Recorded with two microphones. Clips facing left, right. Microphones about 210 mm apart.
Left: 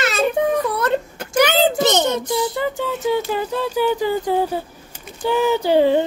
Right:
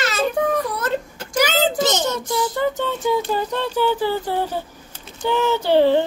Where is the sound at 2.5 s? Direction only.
10° left (ahead or behind).